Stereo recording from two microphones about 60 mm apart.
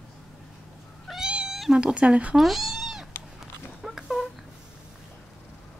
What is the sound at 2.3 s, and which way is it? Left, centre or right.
Cat, centre.